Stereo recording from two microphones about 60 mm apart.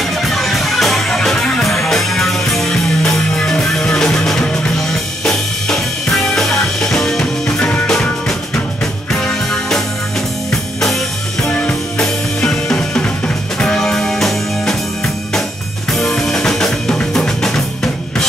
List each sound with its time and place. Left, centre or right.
0.2 s music: centre
12.0 s drum kit: centre
13.6 s music: centre
15.9 s drum kit: centre